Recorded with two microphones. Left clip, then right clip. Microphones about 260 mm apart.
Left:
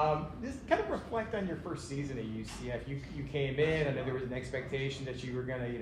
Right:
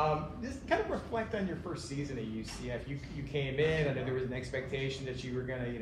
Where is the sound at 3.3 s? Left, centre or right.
Left.